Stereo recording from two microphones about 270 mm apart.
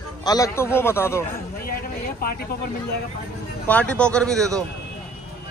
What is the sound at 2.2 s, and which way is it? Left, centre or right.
Speech, left.